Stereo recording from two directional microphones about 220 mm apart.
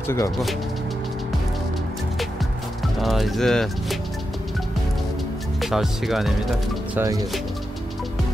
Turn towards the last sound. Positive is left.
turn(degrees=-15)  # may be behind; listen again after turning